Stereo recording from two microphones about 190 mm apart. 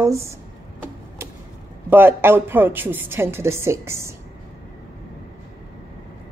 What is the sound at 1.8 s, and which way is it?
A woman's voice, 10° right (ahead or behind).